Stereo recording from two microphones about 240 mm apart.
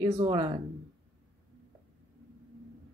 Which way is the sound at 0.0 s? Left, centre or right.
Centre.